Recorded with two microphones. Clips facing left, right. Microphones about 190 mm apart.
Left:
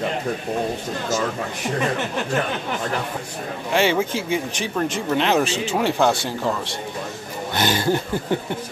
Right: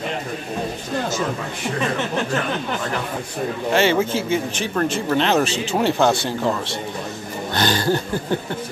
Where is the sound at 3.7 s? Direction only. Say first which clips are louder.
Right 1 dB; 10° left (ahead or behind).